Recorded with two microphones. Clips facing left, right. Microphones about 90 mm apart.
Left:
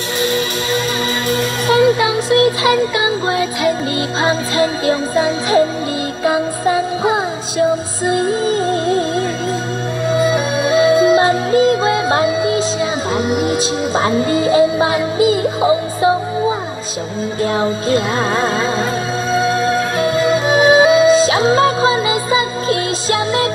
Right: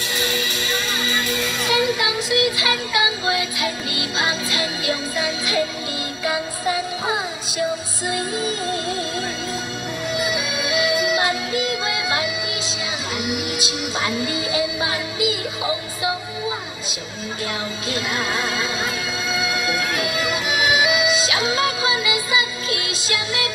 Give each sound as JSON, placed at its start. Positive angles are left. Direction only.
{"t": 1.3, "sound": "music", "side_deg": 40}
{"t": 17.6, "sound": "music", "side_deg": 35}